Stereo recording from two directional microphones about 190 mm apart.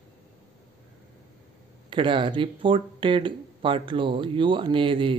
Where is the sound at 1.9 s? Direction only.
25° right (ahead or behind).